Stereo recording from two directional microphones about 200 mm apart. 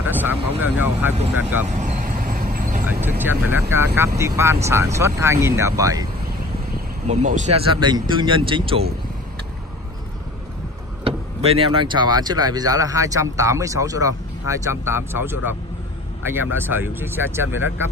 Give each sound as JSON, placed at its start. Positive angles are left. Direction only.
{"t": 0.0, "sound": "vehicle", "side_deg": -10}
{"t": 0.6, "sound": "speech", "side_deg": -10}
{"t": 1.7, "sound": "vehicle", "side_deg": -35}
{"t": 2.8, "sound": "speech", "side_deg": -10}
{"t": 7.1, "sound": "speech", "side_deg": -35}
{"t": 11.1, "sound": "speech", "side_deg": -30}